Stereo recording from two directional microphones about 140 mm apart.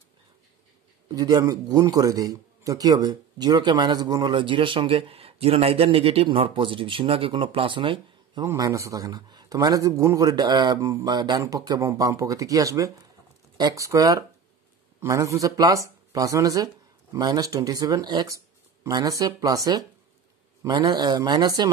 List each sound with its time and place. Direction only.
1.0 s a man's voice: 30° right (ahead or behind)
8.5 s a man's voice: 25° right (ahead or behind)